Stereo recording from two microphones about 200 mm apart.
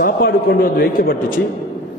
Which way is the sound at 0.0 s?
50° left (ahead or behind).